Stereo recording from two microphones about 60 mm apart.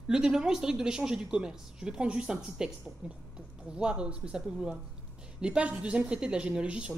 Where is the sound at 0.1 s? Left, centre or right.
Centre.